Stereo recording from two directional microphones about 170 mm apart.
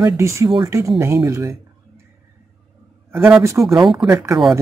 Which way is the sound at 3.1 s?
10° right (ahead or behind).